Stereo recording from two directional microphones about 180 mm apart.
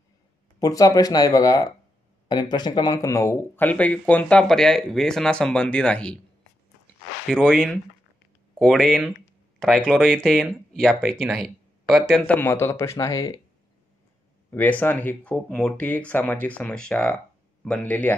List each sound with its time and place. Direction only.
0.6 s speech: 20° left (ahead or behind)
7.2 s speech: centre (ahead or behind); by 13.4 s 20° left (ahead or behind)
14.5 s speech: 10° left (ahead or behind)